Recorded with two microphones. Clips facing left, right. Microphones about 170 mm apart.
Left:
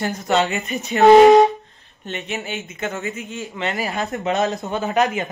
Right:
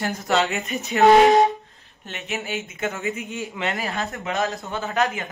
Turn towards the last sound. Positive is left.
turn(degrees=20)  # may be behind; listen again after turning